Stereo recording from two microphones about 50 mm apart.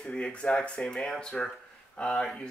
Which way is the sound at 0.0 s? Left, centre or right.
Left.